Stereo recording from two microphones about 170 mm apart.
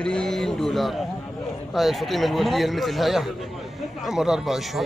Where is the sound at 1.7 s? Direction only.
Centre (ahead or behind).